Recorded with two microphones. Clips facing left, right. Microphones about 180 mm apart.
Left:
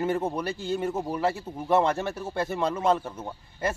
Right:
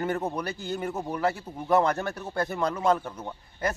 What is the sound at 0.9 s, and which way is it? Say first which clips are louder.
A man's voice: left 1 dB; 10° left (ahead or behind).